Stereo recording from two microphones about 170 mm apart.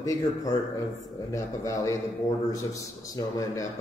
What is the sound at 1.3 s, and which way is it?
Speech, 20° left (ahead or behind).